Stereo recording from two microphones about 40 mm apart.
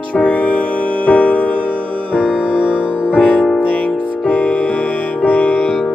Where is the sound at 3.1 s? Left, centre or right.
Left.